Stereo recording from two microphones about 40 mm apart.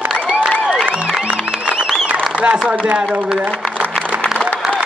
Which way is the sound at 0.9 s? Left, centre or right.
Right.